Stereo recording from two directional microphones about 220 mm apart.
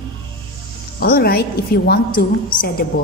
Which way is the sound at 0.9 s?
45° left (ahead or behind).